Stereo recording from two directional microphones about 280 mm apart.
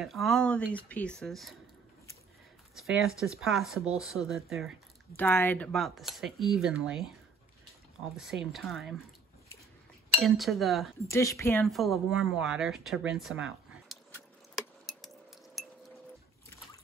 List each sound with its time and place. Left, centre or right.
0.0 s speech: centre
2.8 s speech: centre
8.2 s speech: centre
10.2 s speech: centre
11.1 s speech: centre
15.6 s chink: centre